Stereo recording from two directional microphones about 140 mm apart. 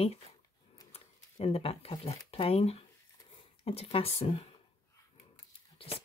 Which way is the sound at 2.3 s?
45° left (ahead or behind).